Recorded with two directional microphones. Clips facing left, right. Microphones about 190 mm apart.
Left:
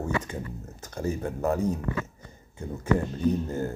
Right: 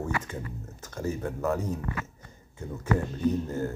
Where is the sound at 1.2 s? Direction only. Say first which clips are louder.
Left 2 dB; 30° left (ahead or behind).